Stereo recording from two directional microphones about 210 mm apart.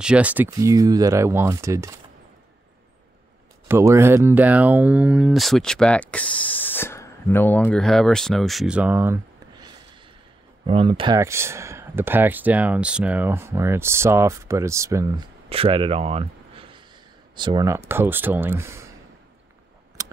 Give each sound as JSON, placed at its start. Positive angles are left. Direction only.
{"t": 0.0, "sound": "speech", "side_deg": -5}
{"t": 3.6, "sound": "speech", "side_deg": -10}
{"t": 10.7, "sound": "speech", "side_deg": -25}
{"t": 11.1, "sound": "speech", "side_deg": -15}
{"t": 15.5, "sound": "speech", "side_deg": -25}
{"t": 20.0, "sound": "scissors", "side_deg": -15}